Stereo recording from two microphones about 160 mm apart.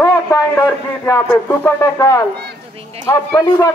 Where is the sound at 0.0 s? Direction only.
15° left (ahead or behind).